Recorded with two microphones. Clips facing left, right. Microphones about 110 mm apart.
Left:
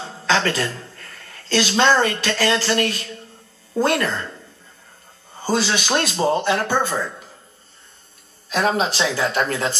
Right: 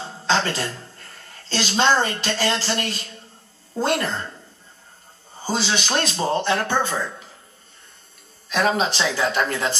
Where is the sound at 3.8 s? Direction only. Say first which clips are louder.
Left 2 dB; 20° right (ahead or behind).